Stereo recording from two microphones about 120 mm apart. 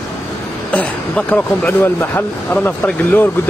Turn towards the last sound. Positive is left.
turn(degrees=15)  # may be behind; listen again after turning